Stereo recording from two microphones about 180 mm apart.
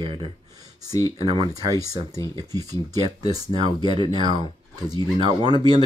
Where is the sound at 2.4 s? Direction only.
20° right (ahead or behind).